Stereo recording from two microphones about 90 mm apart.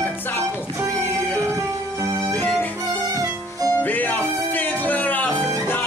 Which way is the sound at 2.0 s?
40° right (ahead or behind).